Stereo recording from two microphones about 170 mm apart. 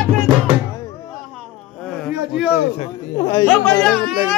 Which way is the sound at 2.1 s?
5° right (ahead or behind).